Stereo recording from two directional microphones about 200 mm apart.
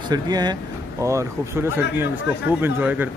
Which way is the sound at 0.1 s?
20° right (ahead or behind).